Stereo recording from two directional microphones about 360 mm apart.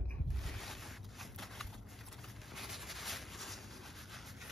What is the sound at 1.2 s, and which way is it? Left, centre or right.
Shuffling cards, centre.